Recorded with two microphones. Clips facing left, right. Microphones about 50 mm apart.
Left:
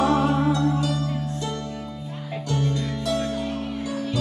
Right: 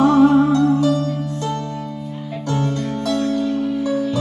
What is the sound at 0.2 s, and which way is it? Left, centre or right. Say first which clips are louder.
Music: right 8 dB; right.